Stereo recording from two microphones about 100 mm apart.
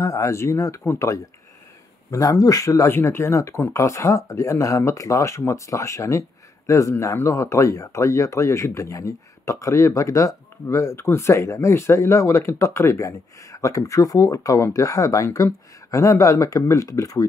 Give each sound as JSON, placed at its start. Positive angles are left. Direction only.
{"t": 0.0, "sound": "speech", "side_deg": 35}